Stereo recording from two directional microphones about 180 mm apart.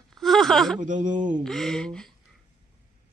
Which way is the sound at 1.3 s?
Centre (ahead or behind).